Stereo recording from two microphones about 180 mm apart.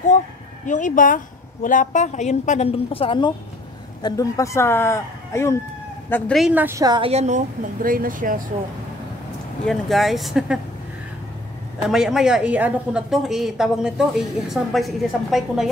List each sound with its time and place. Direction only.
0.7 s a woman's voice: 45° left (ahead or behind); by 7.1 s 20° right (ahead or behind)
7.1 s speech: 40° right (ahead or behind)
9.7 s a woman's voice: centre (ahead or behind)
11.9 s a woman's voice: 5° right (ahead or behind)